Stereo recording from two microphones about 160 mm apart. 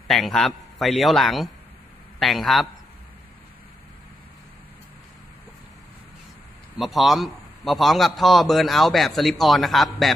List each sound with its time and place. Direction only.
0.1 s a man's voice: centre (ahead or behind)
6.8 s a man's voice: centre (ahead or behind)